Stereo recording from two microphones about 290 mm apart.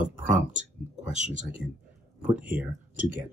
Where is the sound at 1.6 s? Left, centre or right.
Right.